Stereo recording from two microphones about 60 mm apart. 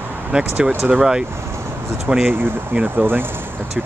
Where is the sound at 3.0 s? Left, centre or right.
Right.